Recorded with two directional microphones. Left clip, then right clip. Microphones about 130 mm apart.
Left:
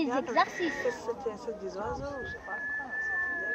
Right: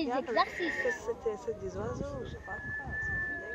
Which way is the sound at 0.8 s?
45° right (ahead or behind).